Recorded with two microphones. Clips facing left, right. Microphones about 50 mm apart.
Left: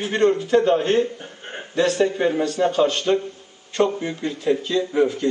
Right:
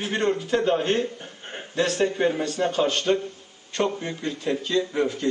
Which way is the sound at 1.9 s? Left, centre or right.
Centre.